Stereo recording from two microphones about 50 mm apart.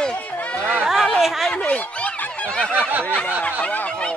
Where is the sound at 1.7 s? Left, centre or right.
Left.